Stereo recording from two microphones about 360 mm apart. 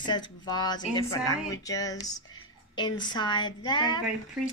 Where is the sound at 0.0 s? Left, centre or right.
Centre.